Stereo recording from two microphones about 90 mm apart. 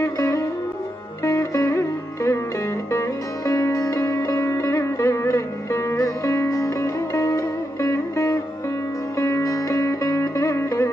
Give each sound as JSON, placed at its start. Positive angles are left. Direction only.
{"t": 0.0, "sound": "music", "side_deg": 35}